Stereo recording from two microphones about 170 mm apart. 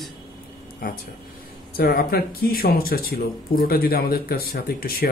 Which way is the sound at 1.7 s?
60° left (ahead or behind).